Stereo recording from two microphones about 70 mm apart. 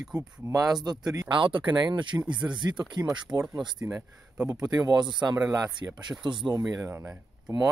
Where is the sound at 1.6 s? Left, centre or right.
Right.